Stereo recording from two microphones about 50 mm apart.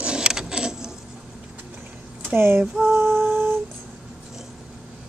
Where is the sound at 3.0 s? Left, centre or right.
Right.